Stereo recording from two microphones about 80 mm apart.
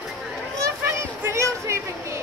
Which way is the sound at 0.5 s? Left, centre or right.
Right.